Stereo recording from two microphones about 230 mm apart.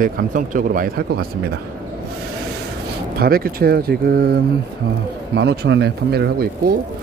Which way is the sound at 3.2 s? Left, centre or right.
Right.